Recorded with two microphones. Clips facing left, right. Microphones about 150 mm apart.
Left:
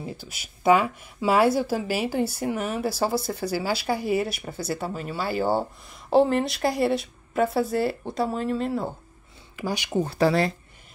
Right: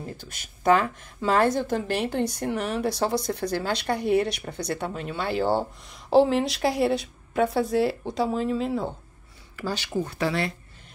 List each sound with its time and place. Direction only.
0.0 s speech: 10° left (ahead or behind)
9.6 s speech: 15° left (ahead or behind)
10.0 s speech: 35° left (ahead or behind)